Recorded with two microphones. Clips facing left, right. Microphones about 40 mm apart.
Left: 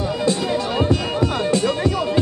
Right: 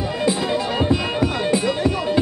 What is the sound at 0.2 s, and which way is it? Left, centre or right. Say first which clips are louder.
Music: right 1 dB; centre.